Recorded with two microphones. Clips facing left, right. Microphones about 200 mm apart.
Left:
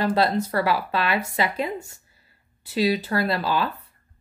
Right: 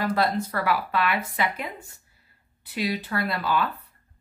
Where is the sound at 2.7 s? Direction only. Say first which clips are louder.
Left 6 dB; 30° left (ahead or behind).